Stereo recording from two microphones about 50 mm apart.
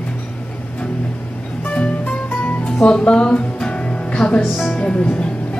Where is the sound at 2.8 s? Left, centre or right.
Centre.